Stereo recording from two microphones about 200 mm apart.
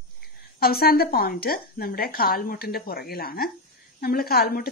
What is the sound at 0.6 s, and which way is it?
A woman's voice, 50° left (ahead or behind).